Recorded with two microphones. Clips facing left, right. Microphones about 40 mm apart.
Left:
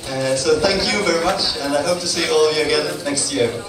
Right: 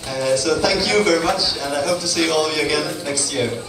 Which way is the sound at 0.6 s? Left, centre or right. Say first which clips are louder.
Left 1 dB; left.